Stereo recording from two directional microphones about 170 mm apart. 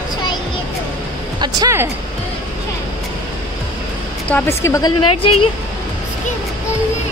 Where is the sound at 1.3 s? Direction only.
25° right (ahead or behind).